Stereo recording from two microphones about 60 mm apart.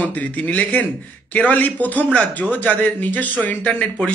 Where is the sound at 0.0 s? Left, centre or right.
Left.